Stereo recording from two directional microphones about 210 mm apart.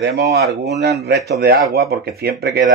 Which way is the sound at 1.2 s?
50° right (ahead or behind).